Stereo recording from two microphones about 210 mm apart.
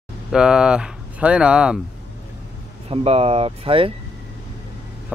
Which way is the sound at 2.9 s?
30° right (ahead or behind).